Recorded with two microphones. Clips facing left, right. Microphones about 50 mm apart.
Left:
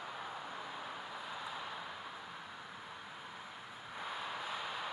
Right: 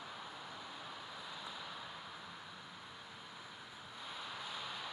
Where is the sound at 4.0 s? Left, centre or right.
Left.